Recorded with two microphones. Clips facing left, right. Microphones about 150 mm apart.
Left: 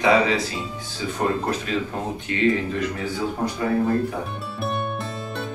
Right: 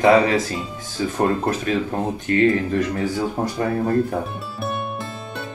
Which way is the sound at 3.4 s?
30° right (ahead or behind).